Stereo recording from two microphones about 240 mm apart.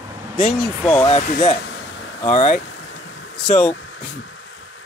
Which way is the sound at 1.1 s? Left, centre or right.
Left.